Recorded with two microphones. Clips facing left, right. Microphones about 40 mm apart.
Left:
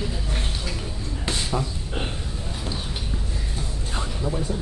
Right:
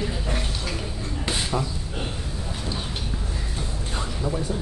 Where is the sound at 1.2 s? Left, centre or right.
Centre.